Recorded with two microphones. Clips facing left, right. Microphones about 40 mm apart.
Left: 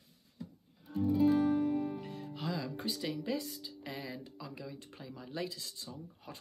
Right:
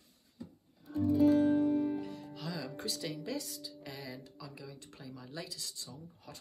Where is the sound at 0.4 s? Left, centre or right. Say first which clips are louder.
Left 1 dB; left.